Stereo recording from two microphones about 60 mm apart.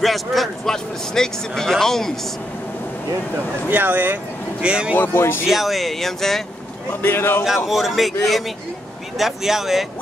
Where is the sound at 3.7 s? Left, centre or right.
Right.